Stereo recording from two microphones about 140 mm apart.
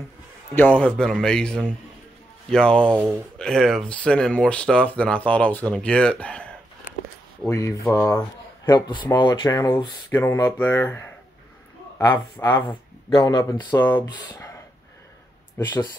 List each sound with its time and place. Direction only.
0.6 s speech: 10° left (ahead or behind)
2.9 s speech: 15° right (ahead or behind)
3.3 s speech: 5° left (ahead or behind)
7.4 s speech: 20° left (ahead or behind)
8.6 s speech: 30° left (ahead or behind); by 11.1 s 15° left (ahead or behind)
12.1 s speech: 20° left (ahead or behind)
12.6 s speech: 30° left (ahead or behind)